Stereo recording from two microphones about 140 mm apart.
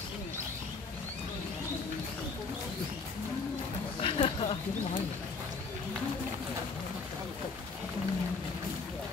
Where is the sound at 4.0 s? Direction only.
40° left (ahead or behind).